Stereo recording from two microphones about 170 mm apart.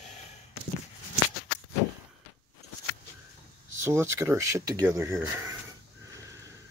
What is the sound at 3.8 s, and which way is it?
Speech, 15° right (ahead or behind).